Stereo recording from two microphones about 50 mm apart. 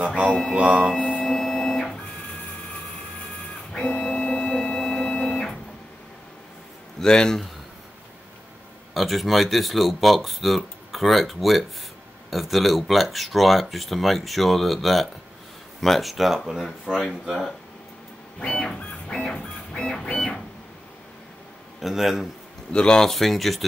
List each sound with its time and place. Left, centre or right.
0.0 s music: right
0.9 s a sound: left
1.2 s printer: centre
3.7 s printer: centre
7.0 s music: centre
8.9 s speech: centre
18.4 s printer: centre
19.2 s music: centre
21.8 s speech: centre
22.7 s speech: centre